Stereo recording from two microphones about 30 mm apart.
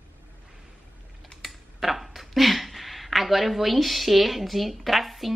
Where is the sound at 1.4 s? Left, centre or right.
Centre.